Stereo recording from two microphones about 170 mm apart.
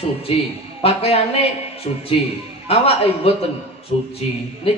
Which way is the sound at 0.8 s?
35° left (ahead or behind).